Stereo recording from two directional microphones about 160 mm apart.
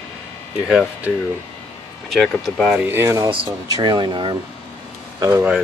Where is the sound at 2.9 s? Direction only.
15° right (ahead or behind).